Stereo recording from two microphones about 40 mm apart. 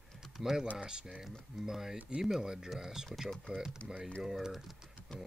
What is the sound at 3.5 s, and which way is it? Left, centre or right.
Speech, right.